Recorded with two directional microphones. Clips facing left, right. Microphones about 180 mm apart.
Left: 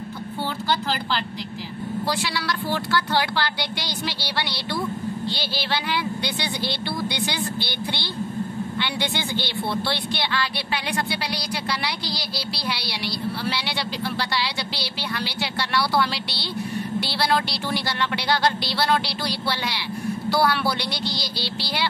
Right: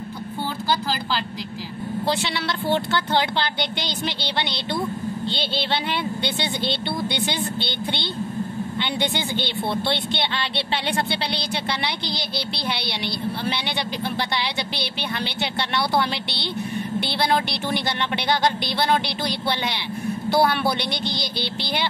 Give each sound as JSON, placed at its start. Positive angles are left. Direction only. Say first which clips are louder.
{"t": 2.0, "sound": "a woman's voice", "louder": "right 3 dB", "side_deg": -25}